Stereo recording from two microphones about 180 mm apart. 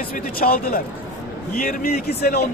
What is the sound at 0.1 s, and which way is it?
A man's voice, 55° left (ahead or behind).